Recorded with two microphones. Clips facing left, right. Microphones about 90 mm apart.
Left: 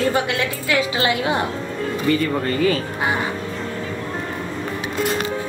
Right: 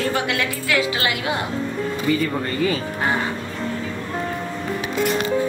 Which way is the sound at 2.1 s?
5° right (ahead or behind).